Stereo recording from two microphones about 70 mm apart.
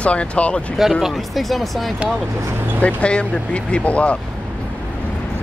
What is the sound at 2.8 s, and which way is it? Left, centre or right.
Speech, centre.